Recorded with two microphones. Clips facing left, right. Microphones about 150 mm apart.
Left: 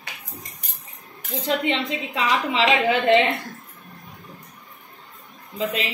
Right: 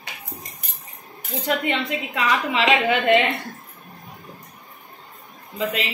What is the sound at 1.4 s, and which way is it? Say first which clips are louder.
A woman's voice: even; 30° left (ahead or behind).